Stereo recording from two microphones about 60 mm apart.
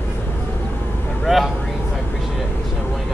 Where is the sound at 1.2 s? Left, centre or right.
Centre.